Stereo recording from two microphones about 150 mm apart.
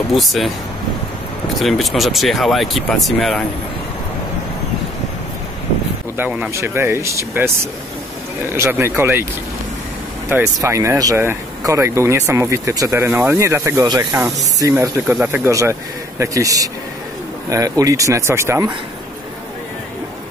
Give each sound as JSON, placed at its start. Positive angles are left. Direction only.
{"t": 0.1, "sound": "speech", "side_deg": 0}
{"t": 1.6, "sound": "speech", "side_deg": 0}
{"t": 6.1, "sound": "speech", "side_deg": -10}
{"t": 10.3, "sound": "speech", "side_deg": -20}